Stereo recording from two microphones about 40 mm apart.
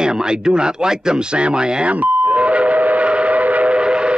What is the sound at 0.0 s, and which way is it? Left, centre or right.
Speech, centre.